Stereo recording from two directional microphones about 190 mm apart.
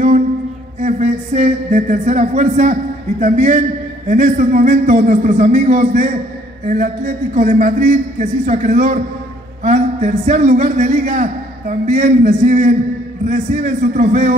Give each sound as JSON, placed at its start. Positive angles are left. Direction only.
{"t": 0.8, "sound": "a man's voice", "side_deg": -40}